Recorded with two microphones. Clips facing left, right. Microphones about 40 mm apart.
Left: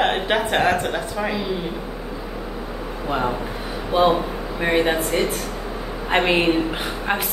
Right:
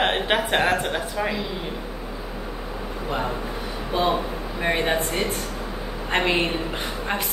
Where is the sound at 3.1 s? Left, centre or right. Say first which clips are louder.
Left 4 dB; centre.